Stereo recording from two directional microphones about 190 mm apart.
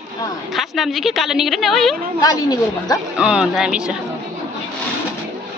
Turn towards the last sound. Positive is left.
turn(degrees=-5)  # may be behind; listen again after turning